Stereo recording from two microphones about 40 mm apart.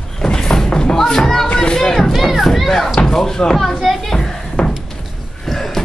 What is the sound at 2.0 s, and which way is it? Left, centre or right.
Crowd, centre.